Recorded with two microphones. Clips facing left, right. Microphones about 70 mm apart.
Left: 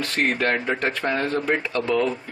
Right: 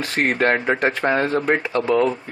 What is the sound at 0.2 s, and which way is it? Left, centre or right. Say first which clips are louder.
Speech: right 4 dB; right.